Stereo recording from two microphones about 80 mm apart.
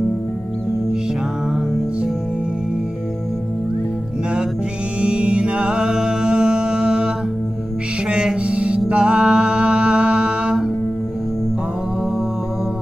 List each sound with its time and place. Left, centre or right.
5.0 s music: centre
8.1 s music: centre